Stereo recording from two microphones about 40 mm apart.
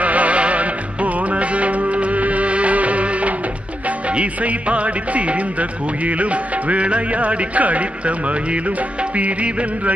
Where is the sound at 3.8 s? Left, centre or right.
Right.